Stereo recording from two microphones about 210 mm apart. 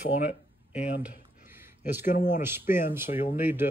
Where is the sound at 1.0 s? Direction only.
10° right (ahead or behind).